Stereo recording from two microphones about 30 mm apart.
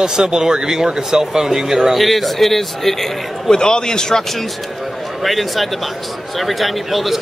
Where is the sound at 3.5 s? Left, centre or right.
Left.